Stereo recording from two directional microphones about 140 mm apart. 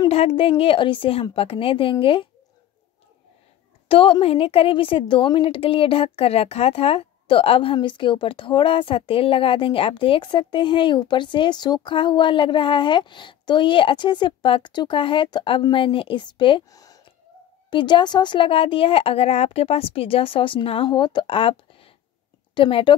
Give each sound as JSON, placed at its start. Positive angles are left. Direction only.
{"t": 0.1, "sound": "a woman's voice", "side_deg": 45}
{"t": 3.9, "sound": "a woman's voice", "side_deg": 40}
{"t": 16.7, "sound": "a sound", "side_deg": 25}
{"t": 17.6, "sound": "a woman's voice", "side_deg": 35}